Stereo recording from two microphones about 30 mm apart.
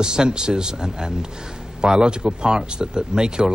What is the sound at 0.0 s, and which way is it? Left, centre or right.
Speech, right.